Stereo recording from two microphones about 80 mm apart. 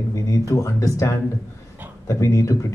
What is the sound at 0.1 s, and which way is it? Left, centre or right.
Speech, left.